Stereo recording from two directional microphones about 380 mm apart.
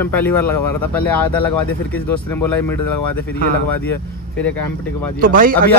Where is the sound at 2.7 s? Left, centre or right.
Left.